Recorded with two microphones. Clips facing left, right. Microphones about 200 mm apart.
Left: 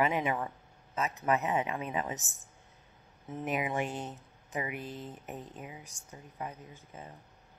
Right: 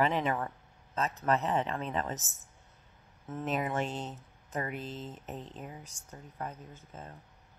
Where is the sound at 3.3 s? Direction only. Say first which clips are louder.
Even; 15° left (ahead or behind).